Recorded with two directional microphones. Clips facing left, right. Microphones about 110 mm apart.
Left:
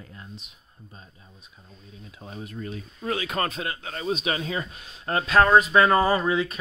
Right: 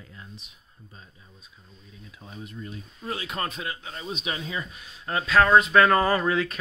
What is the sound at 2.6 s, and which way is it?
Speech, 90° left.